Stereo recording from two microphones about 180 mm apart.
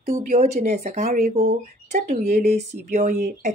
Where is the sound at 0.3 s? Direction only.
40° right (ahead or behind).